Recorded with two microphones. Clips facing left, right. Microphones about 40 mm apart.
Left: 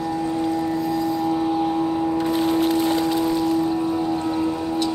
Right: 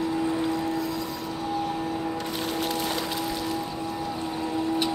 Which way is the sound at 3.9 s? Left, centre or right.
Left.